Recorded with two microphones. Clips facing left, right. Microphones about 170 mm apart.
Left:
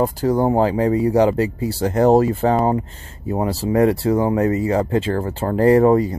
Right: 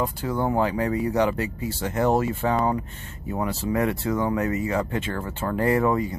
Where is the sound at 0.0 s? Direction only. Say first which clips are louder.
Left 8 dB; 40° left (ahead or behind).